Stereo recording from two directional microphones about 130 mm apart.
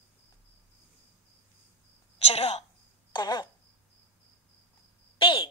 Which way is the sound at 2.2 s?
50° left (ahead or behind).